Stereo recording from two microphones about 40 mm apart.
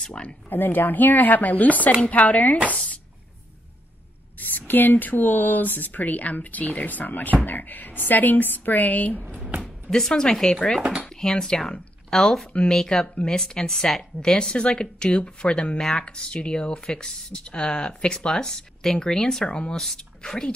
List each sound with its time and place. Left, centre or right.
0.0 s speech: left
0.5 s speech: left
4.4 s speech: left
9.8 s a woman's voice: centre
10.8 s speech: right
11.1 s a woman's voice: centre
14.2 s speech: centre
15.8 s a woman's voice: centre